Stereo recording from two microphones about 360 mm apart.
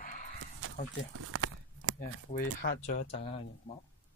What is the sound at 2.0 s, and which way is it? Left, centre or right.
Speech, left.